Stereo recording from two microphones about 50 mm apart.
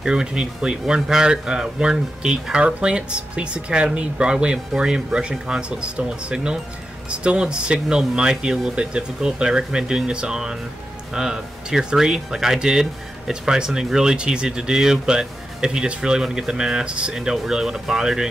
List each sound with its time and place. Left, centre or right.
0.0 s speech: centre